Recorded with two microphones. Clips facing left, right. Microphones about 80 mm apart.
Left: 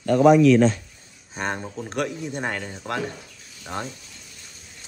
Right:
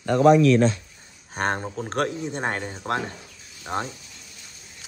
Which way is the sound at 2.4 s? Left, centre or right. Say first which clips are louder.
Right 1 dB; right.